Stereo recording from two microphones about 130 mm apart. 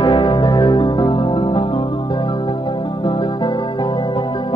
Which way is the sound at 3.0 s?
35° left (ahead or behind).